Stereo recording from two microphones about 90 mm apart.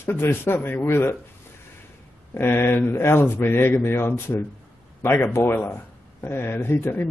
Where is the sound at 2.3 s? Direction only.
25° left (ahead or behind).